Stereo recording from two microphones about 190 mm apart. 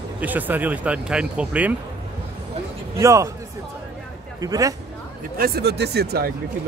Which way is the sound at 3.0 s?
15° right (ahead or behind).